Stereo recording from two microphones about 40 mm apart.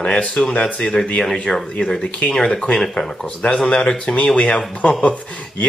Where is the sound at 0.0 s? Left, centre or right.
Left.